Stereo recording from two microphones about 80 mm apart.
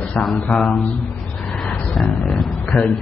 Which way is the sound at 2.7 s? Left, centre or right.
Centre.